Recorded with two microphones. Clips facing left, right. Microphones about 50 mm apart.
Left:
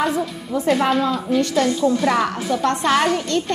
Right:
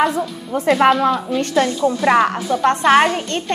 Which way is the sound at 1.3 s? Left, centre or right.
Right.